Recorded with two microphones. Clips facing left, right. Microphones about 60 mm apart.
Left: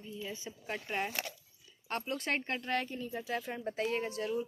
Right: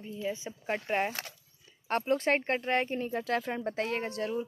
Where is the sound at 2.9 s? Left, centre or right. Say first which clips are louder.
Right 7 dB; right.